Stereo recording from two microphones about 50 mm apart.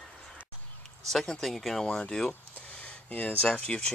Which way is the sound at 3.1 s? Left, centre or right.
Left.